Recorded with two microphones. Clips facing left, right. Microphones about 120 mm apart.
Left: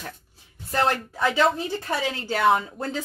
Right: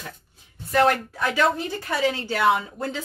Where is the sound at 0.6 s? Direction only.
25° left (ahead or behind).